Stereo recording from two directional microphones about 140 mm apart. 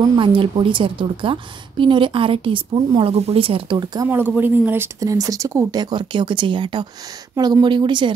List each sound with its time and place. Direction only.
0.2 s a woman's voice: 35° right (ahead or behind)
4.4 s a woman's voice: 15° right (ahead or behind); by 8.1 s 35° right (ahead or behind)